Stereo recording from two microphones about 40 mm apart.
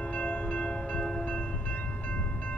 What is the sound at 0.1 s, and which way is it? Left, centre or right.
Music, left.